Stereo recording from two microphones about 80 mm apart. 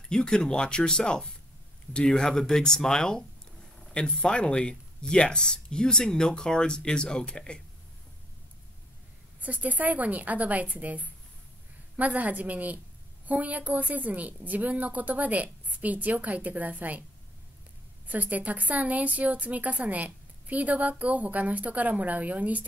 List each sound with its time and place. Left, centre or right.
0.1 s speech: centre
9.4 s a woman's voice: centre
18.0 s a woman's voice: centre